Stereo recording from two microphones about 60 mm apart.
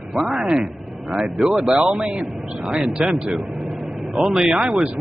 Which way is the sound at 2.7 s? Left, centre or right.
Centre.